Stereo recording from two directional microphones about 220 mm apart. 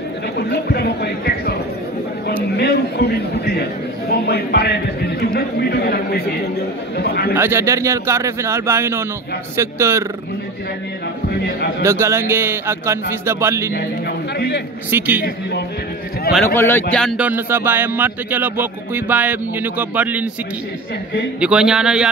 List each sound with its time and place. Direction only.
0.5 s speech: 45° left (ahead or behind)
2.5 s speech: 45° left (ahead or behind)
7.3 s speech: 10° right (ahead or behind)
11.8 s speech: 10° right (ahead or behind)
14.9 s speech: 10° right (ahead or behind)
16.3 s speech: 10° left (ahead or behind)
16.9 s speech: centre (ahead or behind)
21.4 s a man's voice: 5° right (ahead or behind)